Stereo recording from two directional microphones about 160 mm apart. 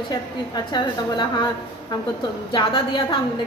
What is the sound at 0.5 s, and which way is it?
Speech, 25° left (ahead or behind).